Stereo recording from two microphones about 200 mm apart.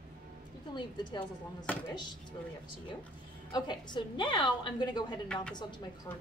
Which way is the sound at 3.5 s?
20° left (ahead or behind).